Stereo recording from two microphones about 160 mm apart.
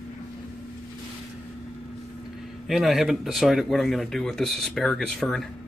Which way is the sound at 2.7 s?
Centre (ahead or behind).